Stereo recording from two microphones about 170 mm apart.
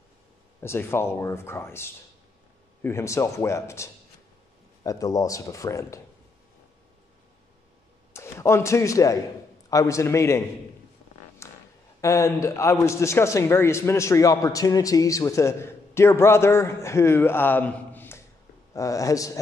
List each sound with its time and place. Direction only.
0.6 s a man's voice: 15° left (ahead or behind)
8.1 s a man's voice: 15° left (ahead or behind)
11.4 s a sound: 15° left (ahead or behind)
12.0 s a man's voice: 20° left (ahead or behind)